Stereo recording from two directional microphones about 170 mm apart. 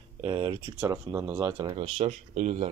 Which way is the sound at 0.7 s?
15° right (ahead or behind).